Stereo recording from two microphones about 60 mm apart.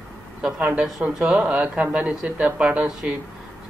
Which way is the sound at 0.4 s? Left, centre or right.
Centre.